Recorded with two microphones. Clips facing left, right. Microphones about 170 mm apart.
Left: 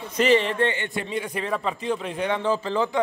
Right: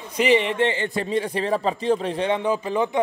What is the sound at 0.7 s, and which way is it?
A man's voice, 35° right (ahead or behind).